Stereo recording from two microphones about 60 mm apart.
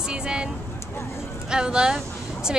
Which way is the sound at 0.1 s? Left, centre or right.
Centre.